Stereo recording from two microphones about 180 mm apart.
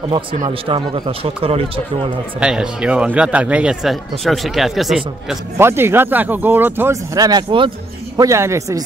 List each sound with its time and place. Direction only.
0.5 s speech: 30° right (ahead or behind)
2.4 s speech: 5° right (ahead or behind)
5.6 s speech: 15° right (ahead or behind)